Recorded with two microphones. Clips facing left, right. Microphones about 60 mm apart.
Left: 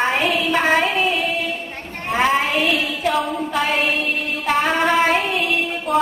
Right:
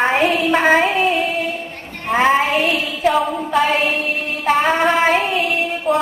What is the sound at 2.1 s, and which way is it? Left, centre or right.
Child singing, centre.